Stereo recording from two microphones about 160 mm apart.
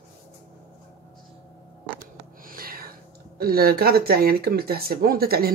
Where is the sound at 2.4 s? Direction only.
65° right (ahead or behind).